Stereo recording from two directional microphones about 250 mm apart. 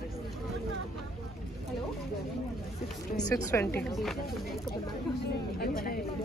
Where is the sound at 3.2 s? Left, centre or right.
Centre.